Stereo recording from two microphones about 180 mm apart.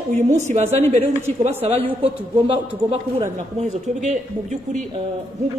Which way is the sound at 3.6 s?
40° right (ahead or behind).